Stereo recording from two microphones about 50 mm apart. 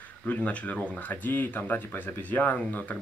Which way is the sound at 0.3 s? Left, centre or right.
Left.